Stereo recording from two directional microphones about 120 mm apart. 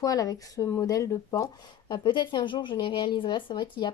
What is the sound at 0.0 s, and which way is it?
Speech, 30° left (ahead or behind).